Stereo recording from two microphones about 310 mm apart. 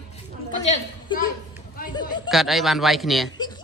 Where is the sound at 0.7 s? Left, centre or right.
Left.